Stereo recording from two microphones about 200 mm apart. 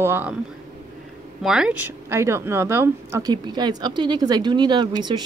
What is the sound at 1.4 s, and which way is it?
Speech, 5° right (ahead or behind).